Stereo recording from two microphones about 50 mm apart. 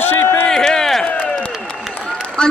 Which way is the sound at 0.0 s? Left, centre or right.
Left.